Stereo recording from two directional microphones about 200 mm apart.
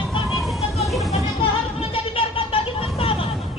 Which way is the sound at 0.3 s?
Centre (ahead or behind).